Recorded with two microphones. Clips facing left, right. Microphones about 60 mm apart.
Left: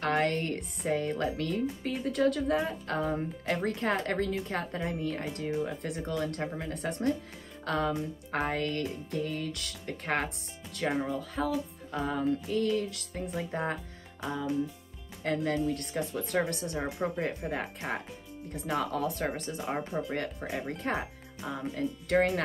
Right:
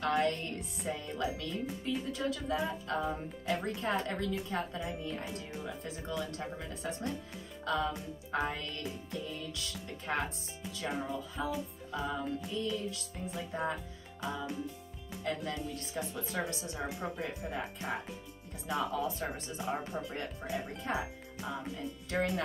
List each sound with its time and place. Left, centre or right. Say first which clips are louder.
0.0 s speech: left 3 dB; left
15.2 s speech: left 8 dB; left
22.1 s speech: left 7 dB; left